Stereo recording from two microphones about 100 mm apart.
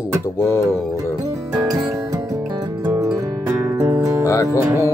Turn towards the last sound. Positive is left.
turn(degrees=-30)  # may be behind; listen again after turning